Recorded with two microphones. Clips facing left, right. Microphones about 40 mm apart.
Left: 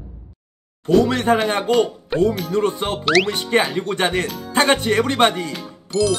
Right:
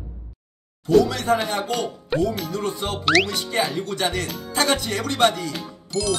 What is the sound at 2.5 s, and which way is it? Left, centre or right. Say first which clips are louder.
Speech: left 6 dB; left.